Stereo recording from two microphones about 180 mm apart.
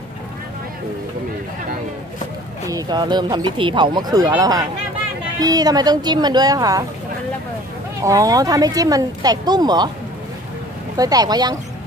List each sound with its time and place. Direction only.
2.6 s speech: 20° right (ahead or behind)
8.0 s speech: 20° right (ahead or behind)
11.0 s speech: 20° right (ahead or behind)